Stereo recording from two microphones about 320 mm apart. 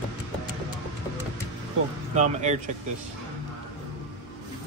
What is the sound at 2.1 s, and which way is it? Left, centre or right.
Speech, right.